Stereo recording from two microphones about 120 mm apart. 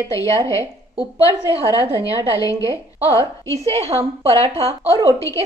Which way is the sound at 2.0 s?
30° left (ahead or behind).